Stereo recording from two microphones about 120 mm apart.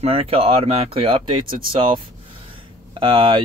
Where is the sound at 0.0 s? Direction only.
55° right (ahead or behind).